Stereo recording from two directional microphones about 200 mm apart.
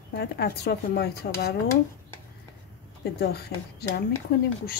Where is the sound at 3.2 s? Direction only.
55° left (ahead or behind).